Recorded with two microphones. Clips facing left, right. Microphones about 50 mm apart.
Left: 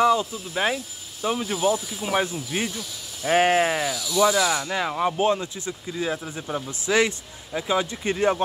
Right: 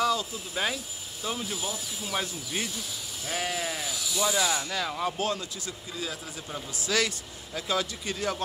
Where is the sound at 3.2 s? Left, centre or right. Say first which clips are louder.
Left 13 dB; left.